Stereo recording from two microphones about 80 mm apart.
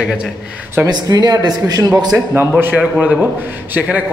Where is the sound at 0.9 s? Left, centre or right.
Right.